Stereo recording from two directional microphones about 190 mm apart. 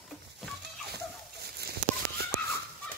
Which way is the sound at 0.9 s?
55° right (ahead or behind).